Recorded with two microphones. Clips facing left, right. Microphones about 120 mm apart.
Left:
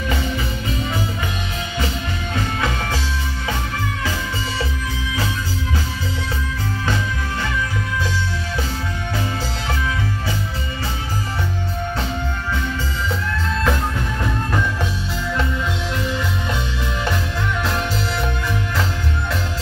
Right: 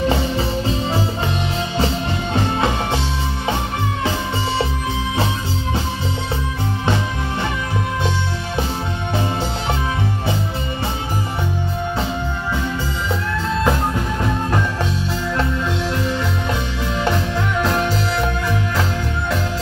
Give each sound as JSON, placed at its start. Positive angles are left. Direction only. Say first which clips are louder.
{"t": 0.0, "sound": "music", "louder": "right 5 dB", "side_deg": -30}
{"t": 2.3, "sound": "music", "louder": "right 4 dB", "side_deg": -30}
{"t": 13.7, "sound": "music", "louder": "right 2 dB", "side_deg": -15}
{"t": 17.0, "sound": "music", "louder": "right 5 dB", "side_deg": -15}